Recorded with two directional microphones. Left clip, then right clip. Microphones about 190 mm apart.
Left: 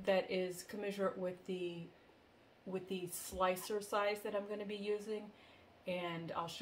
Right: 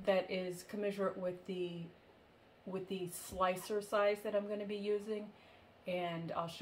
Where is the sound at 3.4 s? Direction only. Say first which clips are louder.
Right 1 dB; 20° left (ahead or behind).